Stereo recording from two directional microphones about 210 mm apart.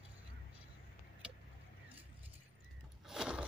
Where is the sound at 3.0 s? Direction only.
5° right (ahead or behind).